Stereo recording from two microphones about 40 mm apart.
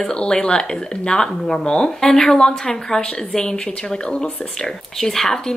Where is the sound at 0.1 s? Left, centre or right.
Left.